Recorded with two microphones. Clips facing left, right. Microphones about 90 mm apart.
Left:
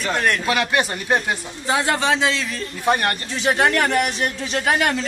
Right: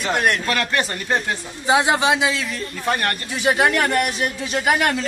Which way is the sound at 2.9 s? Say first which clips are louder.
Left 3 dB; 15° left (ahead or behind).